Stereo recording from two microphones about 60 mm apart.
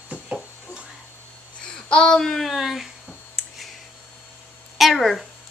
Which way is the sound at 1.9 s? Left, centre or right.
Centre.